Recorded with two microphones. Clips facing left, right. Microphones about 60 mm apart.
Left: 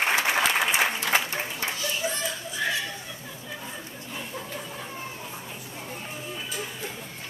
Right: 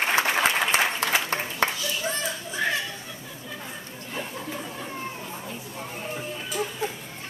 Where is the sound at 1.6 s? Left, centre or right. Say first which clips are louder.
Right 10 dB; right.